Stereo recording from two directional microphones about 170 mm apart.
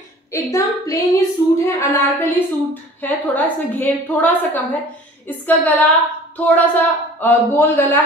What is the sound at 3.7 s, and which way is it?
Speech, 10° left (ahead or behind).